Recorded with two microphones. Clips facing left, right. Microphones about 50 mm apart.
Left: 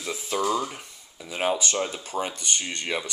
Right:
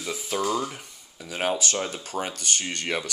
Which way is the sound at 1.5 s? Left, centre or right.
Left.